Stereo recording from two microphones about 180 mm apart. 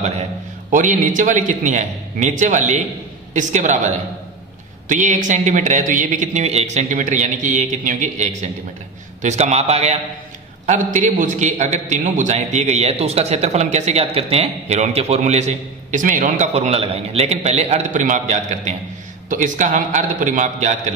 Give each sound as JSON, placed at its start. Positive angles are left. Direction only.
{"t": 0.7, "sound": "a man's voice", "side_deg": -45}